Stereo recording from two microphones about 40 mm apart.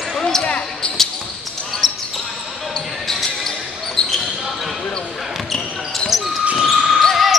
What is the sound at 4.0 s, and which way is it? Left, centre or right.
Basketball bounce, centre.